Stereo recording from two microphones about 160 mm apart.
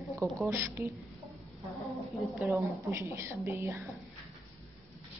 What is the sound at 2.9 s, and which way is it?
Speech, 15° right (ahead or behind).